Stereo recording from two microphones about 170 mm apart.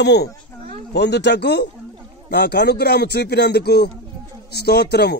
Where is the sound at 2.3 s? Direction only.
75° left (ahead or behind).